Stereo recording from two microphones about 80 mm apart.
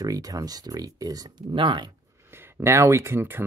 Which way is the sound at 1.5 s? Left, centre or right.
Right.